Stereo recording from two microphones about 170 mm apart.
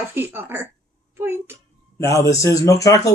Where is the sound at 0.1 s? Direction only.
10° right (ahead or behind).